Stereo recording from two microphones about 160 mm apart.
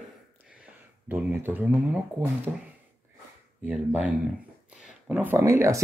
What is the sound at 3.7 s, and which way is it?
Speech, 10° right (ahead or behind).